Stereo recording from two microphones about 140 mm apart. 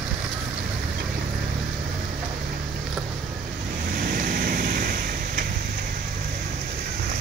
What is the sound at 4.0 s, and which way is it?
Vehicle, 90° right.